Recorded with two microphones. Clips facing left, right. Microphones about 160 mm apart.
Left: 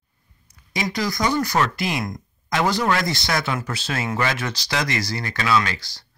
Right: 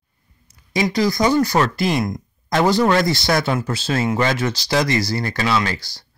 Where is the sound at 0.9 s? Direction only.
30° right (ahead or behind).